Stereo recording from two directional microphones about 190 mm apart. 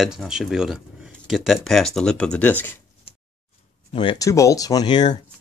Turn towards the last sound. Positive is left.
turn(degrees=20)  # may be behind; listen again after turning